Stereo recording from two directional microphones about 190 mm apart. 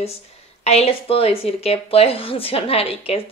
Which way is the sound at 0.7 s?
35° left (ahead or behind).